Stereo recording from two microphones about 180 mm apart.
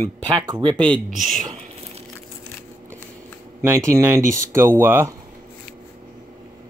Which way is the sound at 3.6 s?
20° right (ahead or behind).